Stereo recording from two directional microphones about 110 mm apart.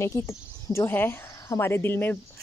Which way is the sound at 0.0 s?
25° left (ahead or behind).